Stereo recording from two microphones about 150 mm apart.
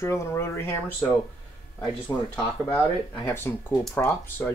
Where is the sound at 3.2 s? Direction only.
15° left (ahead or behind).